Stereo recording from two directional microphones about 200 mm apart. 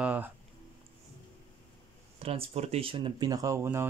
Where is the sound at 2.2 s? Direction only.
30° right (ahead or behind); by 3.8 s 15° right (ahead or behind).